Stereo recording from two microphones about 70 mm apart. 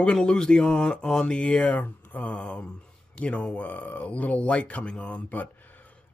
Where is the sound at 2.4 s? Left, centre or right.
Centre.